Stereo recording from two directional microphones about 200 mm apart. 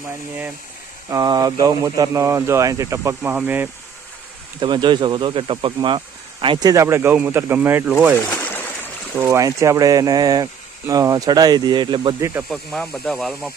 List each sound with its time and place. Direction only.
1.1 s speech: 20° right (ahead or behind)
4.6 s speech: 20° right (ahead or behind)
12.4 s speech: centre (ahead or behind)